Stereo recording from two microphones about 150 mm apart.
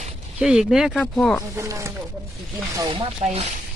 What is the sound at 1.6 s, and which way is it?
Speech, 20° right (ahead or behind).